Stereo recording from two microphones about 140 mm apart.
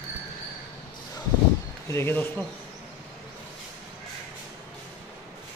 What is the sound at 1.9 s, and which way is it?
Speech, 15° left (ahead or behind).